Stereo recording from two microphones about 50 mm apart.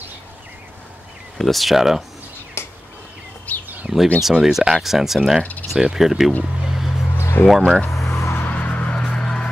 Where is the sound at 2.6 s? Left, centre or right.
Left.